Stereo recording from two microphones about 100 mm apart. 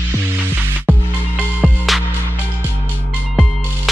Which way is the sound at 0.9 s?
20° right (ahead or behind).